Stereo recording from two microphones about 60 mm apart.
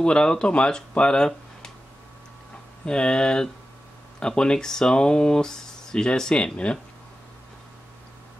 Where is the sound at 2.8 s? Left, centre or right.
Centre.